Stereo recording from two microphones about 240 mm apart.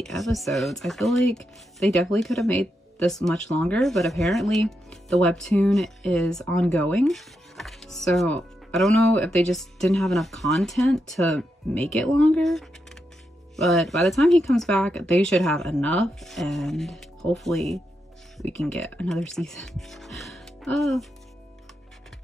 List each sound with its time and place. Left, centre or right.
0.0 s speech: centre